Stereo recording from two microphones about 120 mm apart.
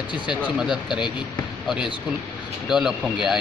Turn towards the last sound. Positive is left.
turn(degrees=-5)  # may be behind; listen again after turning